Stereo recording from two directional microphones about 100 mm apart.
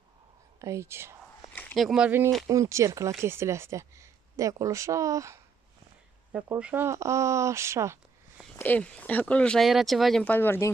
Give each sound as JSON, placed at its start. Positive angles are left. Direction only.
{"t": 0.6, "sound": "speech", "side_deg": -30}
{"t": 1.5, "sound": "a sound", "side_deg": 15}
{"t": 1.8, "sound": "speech", "side_deg": 0}
{"t": 2.0, "sound": "speech", "side_deg": -20}
{"t": 2.4, "sound": "speech", "side_deg": -30}
{"t": 6.6, "sound": "speech", "side_deg": -20}
{"t": 8.5, "sound": "speech", "side_deg": 15}
{"t": 9.7, "sound": "speech", "side_deg": 0}
{"t": 10.2, "sound": "speech", "side_deg": 20}